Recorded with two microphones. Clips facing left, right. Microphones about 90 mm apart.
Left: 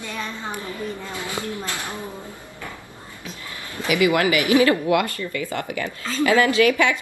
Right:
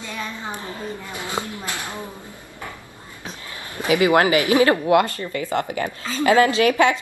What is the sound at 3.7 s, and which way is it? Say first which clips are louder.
A woman's voice: right 3 dB; 25° right (ahead or behind).